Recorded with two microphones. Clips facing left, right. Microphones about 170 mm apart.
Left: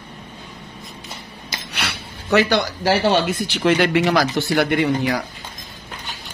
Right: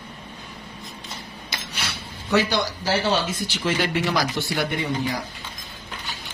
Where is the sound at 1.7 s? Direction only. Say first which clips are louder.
Left 7 dB; 70° left (ahead or behind).